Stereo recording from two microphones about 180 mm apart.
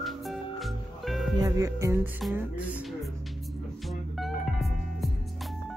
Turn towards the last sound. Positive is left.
turn(degrees=0)  # may be behind; listen again after turning